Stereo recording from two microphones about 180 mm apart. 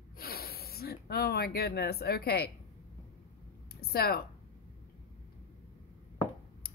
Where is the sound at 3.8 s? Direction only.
60° left (ahead or behind).